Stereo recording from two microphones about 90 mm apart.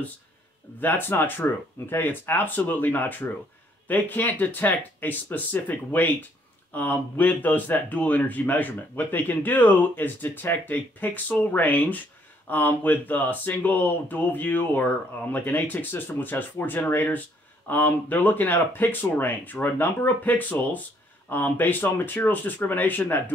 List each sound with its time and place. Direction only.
0.7 s speech: 20° left (ahead or behind)